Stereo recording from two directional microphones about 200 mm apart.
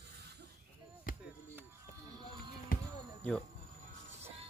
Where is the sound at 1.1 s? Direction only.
45° left (ahead or behind).